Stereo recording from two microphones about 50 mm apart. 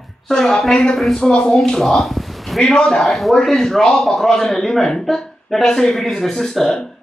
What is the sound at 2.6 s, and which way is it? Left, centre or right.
Speech, centre.